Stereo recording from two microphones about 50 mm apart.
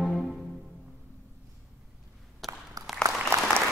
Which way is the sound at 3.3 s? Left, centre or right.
Right.